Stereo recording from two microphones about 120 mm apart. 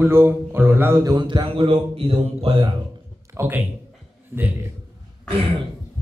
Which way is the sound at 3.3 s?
15° right (ahead or behind).